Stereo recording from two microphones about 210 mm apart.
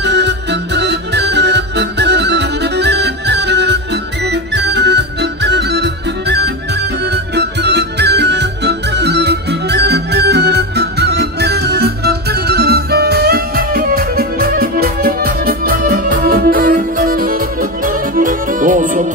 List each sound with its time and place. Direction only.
0.0 s music: 55° right (ahead or behind)